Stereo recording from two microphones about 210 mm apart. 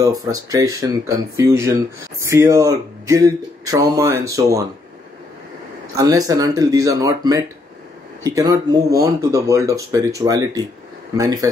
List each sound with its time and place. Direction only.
0.0 s speech: 15° right (ahead or behind)
5.9 s speech: 15° right (ahead or behind)